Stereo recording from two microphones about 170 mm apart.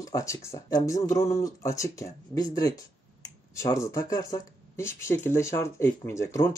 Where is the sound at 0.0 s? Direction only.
20° left (ahead or behind).